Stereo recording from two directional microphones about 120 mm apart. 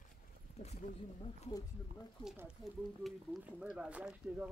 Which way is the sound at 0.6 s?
65° left (ahead or behind).